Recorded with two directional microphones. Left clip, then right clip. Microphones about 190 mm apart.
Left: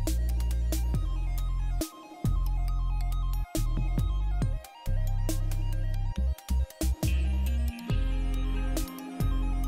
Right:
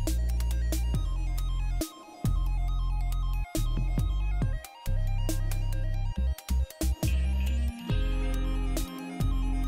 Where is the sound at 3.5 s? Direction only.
Centre (ahead or behind).